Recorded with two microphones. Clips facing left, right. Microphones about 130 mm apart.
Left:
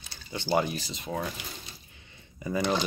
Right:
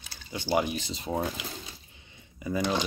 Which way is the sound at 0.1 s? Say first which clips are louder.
Even; 10° right (ahead or behind).